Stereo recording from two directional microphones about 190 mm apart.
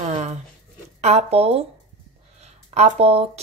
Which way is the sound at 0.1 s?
35° right (ahead or behind).